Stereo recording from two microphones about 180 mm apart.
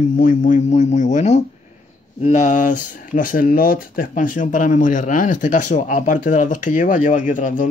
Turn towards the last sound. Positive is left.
turn(degrees=45)  # may be behind; listen again after turning